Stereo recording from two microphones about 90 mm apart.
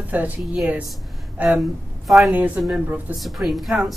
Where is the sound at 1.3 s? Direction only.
20° right (ahead or behind).